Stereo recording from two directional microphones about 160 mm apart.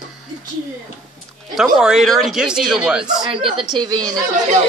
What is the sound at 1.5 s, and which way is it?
Speech, centre (ahead or behind).